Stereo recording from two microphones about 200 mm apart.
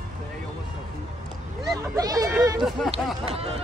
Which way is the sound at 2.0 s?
20° right (ahead or behind).